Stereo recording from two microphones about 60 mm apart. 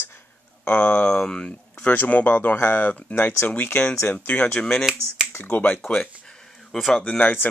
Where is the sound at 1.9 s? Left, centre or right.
Left.